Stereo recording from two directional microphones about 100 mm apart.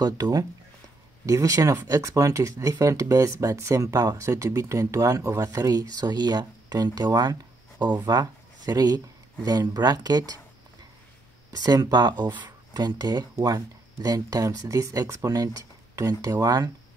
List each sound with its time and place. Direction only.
0.0 s speech: 40° right (ahead or behind)
11.5 s speech: 40° right (ahead or behind)